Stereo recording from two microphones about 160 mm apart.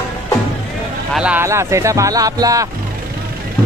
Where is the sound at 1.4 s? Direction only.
20° right (ahead or behind).